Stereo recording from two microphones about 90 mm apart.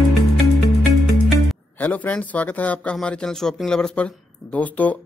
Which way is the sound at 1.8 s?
20° left (ahead or behind).